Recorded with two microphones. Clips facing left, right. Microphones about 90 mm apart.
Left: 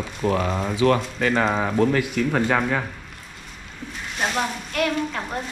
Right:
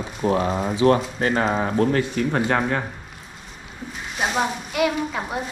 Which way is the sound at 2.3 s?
10° right (ahead or behind).